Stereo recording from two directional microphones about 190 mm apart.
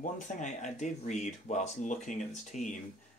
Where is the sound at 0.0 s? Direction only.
40° left (ahead or behind).